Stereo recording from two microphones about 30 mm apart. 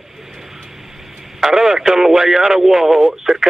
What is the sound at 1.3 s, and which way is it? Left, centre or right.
Speech, centre.